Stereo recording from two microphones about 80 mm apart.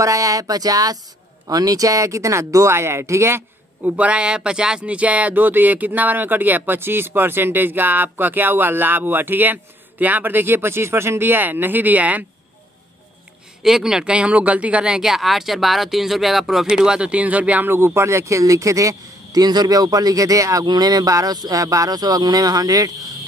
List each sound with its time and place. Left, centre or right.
0.0 s speech: right; by 12.3 s centre
13.6 s speech: centre; by 20.6 s right
20.6 s speech: right